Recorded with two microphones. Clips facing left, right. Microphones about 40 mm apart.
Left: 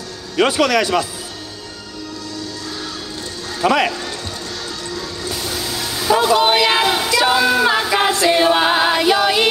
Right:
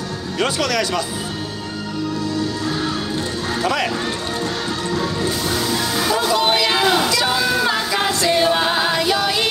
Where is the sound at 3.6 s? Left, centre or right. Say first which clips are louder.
Left 6 dB; left.